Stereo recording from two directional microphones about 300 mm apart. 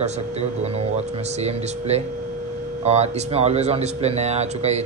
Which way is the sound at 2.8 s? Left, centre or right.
Right.